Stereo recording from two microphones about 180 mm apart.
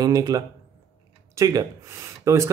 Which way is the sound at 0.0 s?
20° right (ahead or behind).